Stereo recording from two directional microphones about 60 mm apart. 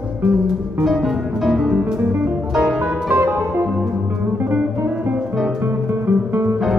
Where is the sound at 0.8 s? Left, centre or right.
Centre.